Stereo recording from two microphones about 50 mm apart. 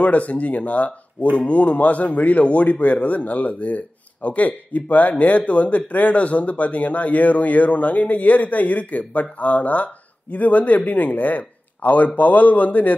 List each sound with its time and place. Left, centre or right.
0.0 s a man's voice: left